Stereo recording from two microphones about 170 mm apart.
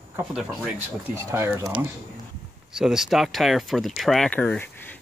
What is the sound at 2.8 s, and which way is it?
Speech, centre (ahead or behind).